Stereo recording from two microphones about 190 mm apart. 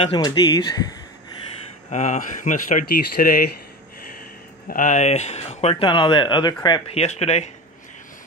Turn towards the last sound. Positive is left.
turn(degrees=35)  # may be behind; listen again after turning